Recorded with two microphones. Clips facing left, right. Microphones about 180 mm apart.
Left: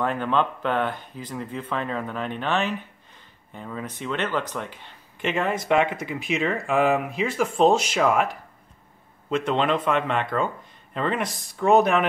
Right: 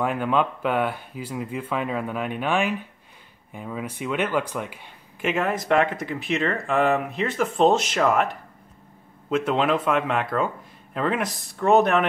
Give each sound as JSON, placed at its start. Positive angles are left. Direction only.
{"t": 0.0, "sound": "speech", "side_deg": -10}